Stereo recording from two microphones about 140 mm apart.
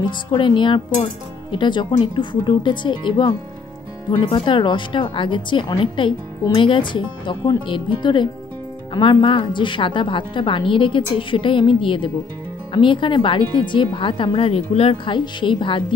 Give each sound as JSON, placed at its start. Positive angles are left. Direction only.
{"t": 0.0, "sound": "a woman's voice", "side_deg": 35}